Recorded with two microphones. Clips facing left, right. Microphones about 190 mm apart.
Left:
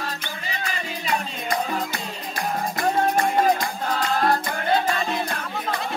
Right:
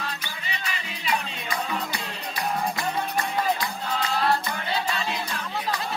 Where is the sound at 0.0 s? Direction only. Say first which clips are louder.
Left 3 dB; 50° left (ahead or behind).